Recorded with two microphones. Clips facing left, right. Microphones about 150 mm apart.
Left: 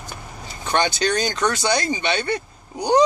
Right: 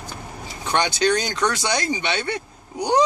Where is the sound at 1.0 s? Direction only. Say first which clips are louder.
Right 1 dB; 35° left (ahead or behind).